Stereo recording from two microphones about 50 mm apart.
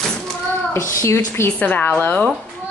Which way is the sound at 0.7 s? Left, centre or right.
Left.